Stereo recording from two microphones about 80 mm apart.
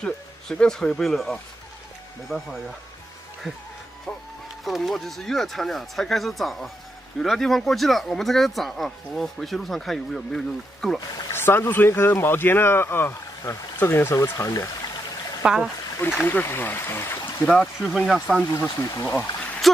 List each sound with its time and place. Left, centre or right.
0.0 s speech: centre
4.6 s speech: centre
11.3 s speech: left
15.4 s speech: centre
16.3 s speech: left
17.6 s speech: centre
18.6 s speech: left
19.6 s a sound: centre